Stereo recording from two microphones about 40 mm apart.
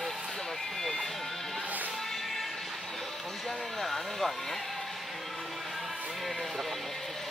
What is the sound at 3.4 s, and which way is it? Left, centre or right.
Speech, centre.